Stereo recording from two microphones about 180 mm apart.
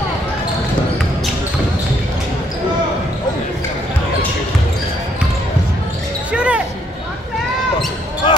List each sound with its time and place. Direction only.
6.3 s basketball bounce: 5° right (ahead or behind)
8.2 s basketball bounce: 25° left (ahead or behind)